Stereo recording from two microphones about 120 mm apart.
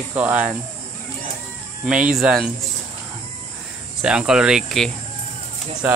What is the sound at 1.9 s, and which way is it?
Speech, 5° right (ahead or behind).